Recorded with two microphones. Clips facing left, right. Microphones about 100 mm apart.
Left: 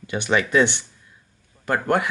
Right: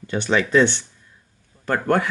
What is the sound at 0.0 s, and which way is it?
Speech, 10° left (ahead or behind).